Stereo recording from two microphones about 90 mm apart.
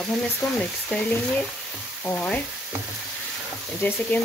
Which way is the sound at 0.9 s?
15° left (ahead or behind).